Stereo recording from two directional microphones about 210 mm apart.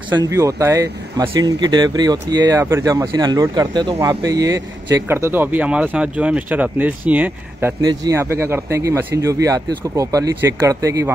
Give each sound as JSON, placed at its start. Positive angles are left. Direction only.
{"t": 0.1, "sound": "speech", "side_deg": -15}
{"t": 7.8, "sound": "speech", "side_deg": -20}